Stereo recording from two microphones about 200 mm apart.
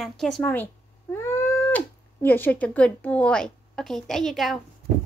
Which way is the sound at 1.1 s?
10° left (ahead or behind).